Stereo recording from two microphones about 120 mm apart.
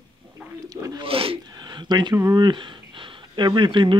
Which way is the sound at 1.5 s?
40° right (ahead or behind).